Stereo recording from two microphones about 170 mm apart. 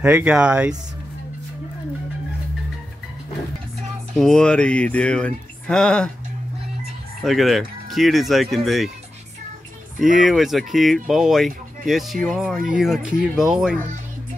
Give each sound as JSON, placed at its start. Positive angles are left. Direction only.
{"t": 0.0, "sound": "speech", "side_deg": -5}
{"t": 4.1, "sound": "speech", "side_deg": 0}
{"t": 7.2, "sound": "speech", "side_deg": 0}
{"t": 9.9, "sound": "speech", "side_deg": 0}